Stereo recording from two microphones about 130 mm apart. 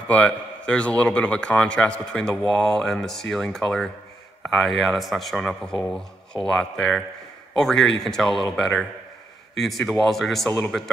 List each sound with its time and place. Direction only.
0.1 s a man's voice: 10° left (ahead or behind)